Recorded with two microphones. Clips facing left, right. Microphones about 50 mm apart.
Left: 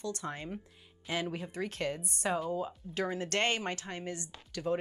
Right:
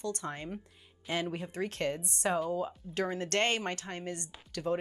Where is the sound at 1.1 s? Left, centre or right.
Right.